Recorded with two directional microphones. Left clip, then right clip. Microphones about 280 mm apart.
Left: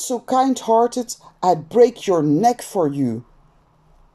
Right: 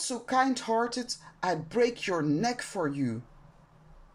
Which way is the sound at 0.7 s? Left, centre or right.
Left.